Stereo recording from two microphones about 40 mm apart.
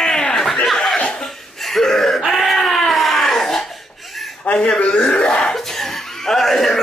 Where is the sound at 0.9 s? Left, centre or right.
Left.